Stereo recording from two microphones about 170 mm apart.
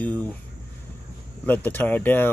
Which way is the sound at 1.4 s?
10° left (ahead or behind).